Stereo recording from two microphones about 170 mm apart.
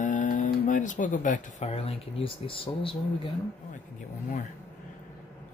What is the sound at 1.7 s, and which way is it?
Speech, 35° left (ahead or behind).